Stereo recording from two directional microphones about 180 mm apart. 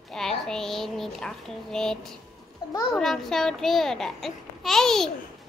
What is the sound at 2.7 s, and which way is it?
Speech, 20° left (ahead or behind).